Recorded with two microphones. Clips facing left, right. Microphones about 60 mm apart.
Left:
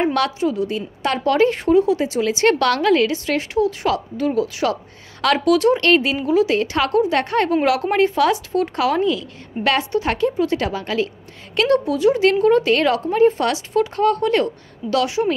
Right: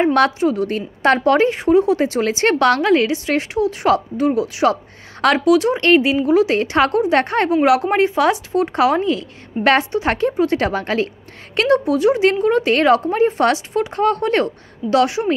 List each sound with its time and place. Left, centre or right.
0.1 s speech: right
1.5 s speech: centre
1.8 s a woman's voice: right